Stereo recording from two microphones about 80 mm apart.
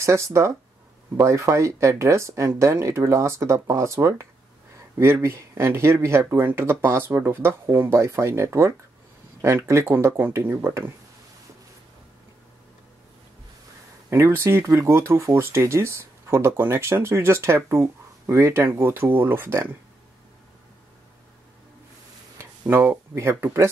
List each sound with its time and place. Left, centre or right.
0.0 s speech: right
14.1 s speech: right
22.4 s a sound: right
23.4 s speech: right